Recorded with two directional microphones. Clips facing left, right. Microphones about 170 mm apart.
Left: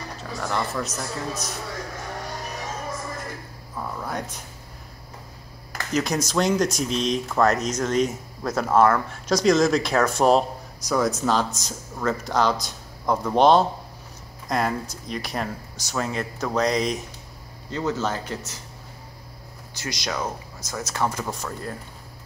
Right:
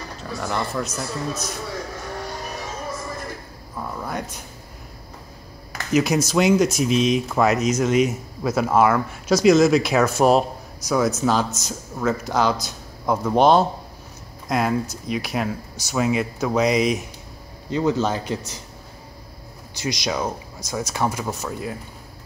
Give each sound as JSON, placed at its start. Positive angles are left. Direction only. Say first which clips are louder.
{"t": 0.2, "sound": "a man's voice", "louder": "right 1 dB", "side_deg": 0}
{"t": 3.9, "sound": "a sound", "louder": "right 2 dB", "side_deg": 0}
{"t": 5.7, "sound": "speech", "louder": "right 5 dB", "side_deg": -5}
{"t": 19.8, "sound": "speech", "louder": "right 4 dB", "side_deg": -15}